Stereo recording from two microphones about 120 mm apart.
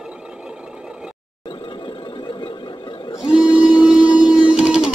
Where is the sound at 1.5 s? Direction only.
45° left (ahead or behind).